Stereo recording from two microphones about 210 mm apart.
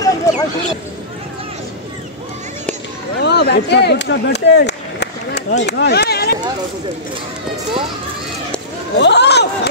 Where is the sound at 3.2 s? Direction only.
50° left (ahead or behind).